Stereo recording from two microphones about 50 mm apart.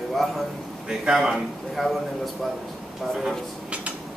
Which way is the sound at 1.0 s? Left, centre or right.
Centre.